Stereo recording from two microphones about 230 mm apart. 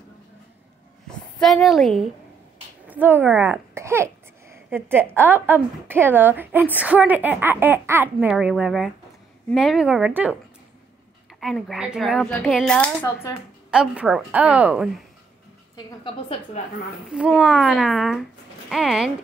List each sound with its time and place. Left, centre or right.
1.4 s speech: centre
11.3 s speech: centre
13.7 s speech: centre
15.7 s a woman's voice: left
17.1 s speech: centre